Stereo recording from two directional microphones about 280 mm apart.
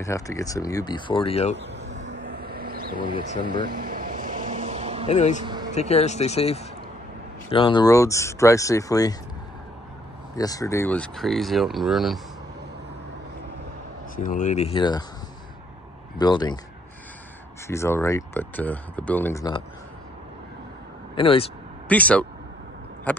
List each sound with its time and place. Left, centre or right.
0.0 s speech: centre
2.0 s vehicle: right
5.0 s speech: left
5.4 s a sound: centre
5.8 s speech: left
10.3 s speech: centre
14.1 s speech: left
16.2 s speech: centre
17.6 s speech: centre
21.1 s speech: centre
21.8 s speech: centre
23.1 s a sound: centre